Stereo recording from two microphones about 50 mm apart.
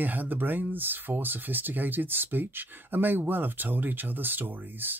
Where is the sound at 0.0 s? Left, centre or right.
Right.